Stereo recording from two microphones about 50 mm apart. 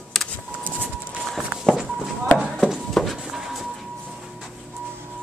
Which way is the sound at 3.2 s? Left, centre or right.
Centre.